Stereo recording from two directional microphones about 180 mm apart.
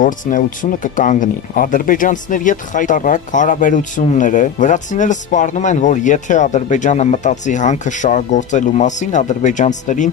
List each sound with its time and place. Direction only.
0.0 s speech: 45° left (ahead or behind)